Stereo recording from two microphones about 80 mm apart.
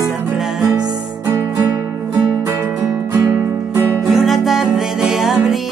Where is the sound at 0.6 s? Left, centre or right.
Right.